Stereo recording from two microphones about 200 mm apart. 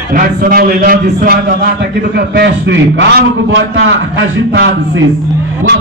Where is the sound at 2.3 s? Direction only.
60° right (ahead or behind).